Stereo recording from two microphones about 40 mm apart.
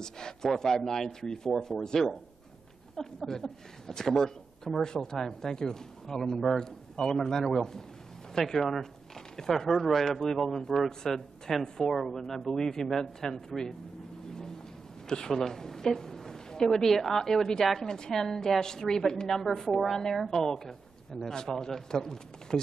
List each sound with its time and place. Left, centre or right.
0.0 s a woman's voice: centre
15.0 s a woman's voice: centre